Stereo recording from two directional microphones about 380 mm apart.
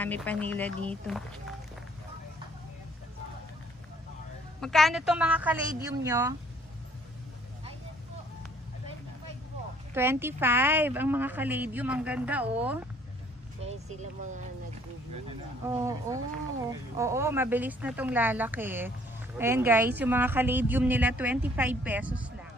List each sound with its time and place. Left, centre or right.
0.0 s speech: centre
4.6 s speech: centre
9.9 s speech: centre
13.7 s speech: centre
15.8 s speech: centre